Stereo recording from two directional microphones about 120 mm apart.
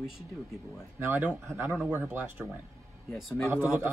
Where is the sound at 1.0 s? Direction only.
15° right (ahead or behind).